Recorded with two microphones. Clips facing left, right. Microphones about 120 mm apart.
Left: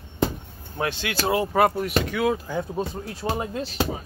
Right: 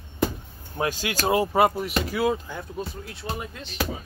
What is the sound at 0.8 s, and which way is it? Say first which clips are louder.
Speech: right 1 dB; 40° right (ahead or behind).